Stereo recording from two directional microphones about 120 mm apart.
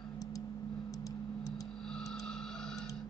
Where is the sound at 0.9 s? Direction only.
30° left (ahead or behind).